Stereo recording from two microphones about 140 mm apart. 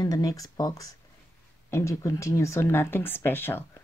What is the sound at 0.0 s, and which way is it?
Speech, 25° left (ahead or behind).